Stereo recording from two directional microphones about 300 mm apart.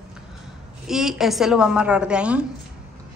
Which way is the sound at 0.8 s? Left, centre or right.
Centre.